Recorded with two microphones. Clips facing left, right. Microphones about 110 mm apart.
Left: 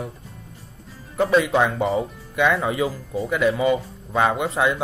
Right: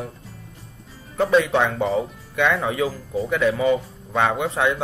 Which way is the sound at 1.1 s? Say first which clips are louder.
Even; 5° left (ahead or behind).